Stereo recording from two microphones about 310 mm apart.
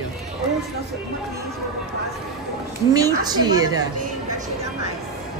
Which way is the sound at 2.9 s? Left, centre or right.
Centre.